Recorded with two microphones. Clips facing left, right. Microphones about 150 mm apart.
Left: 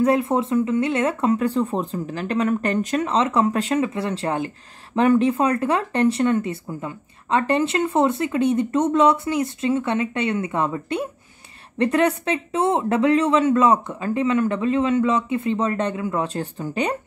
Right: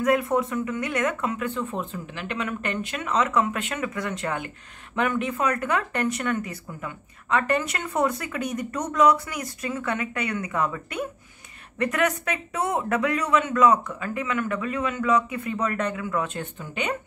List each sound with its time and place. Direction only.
0.0 s speech: 30° left (ahead or behind)